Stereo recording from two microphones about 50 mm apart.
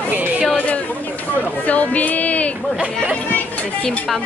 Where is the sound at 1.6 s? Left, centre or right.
Left.